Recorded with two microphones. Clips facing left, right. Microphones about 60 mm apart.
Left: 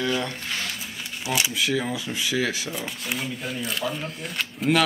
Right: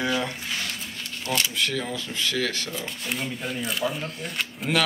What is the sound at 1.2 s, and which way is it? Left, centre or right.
Speech, centre.